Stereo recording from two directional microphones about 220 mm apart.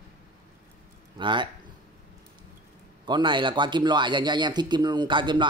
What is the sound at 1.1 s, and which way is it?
Speech, 20° right (ahead or behind).